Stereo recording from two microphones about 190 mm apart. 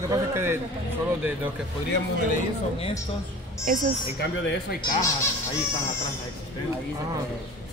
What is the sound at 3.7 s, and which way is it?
Speech, 45° right (ahead or behind).